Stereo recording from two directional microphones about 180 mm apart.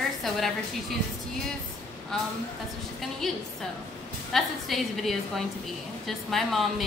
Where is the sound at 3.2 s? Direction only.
Centre (ahead or behind).